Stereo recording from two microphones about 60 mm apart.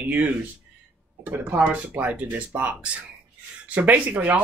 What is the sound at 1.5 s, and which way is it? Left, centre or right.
Speech, right.